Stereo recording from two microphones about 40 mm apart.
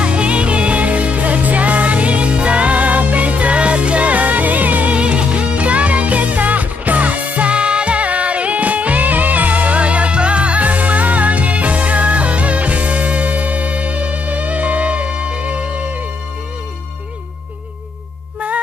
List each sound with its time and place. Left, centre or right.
0.0 s music: right
4.9 s music: right